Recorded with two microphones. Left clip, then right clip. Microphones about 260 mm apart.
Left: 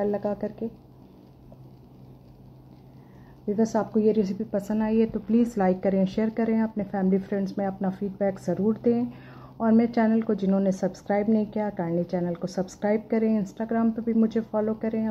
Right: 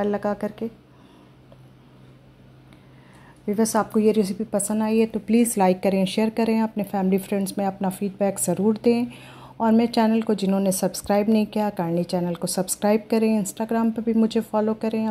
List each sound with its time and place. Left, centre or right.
0.0 s a woman's voice: centre
3.4 s a woman's voice: centre
5.1 s a woman's voice: right; by 15.0 s centre